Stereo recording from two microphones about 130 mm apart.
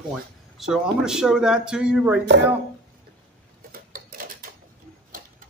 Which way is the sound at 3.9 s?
90° right.